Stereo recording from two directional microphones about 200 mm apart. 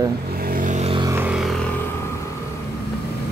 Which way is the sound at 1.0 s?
15° right (ahead or behind).